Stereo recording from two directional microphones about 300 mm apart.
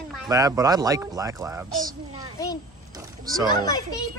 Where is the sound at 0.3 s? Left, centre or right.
Centre.